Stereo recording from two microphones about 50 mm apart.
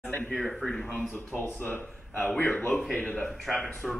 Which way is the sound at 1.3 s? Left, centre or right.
Left.